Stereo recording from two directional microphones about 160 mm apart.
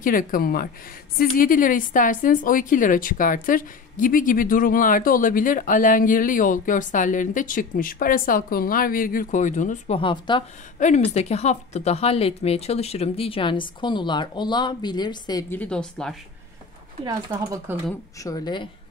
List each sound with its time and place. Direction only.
0.0 s a woman's voice: 60° left (ahead or behind)
9.9 s a woman's voice: 30° left (ahead or behind)
10.8 s a woman's voice: 45° left (ahead or behind); by 15.4 s 25° left (ahead or behind)
15.5 s speech: 5° left (ahead or behind)
17.0 s speech: 20° right (ahead or behind)
18.2 s speech: 25° left (ahead or behind)